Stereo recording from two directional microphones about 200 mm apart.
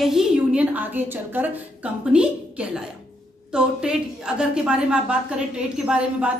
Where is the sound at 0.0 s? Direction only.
5° right (ahead or behind).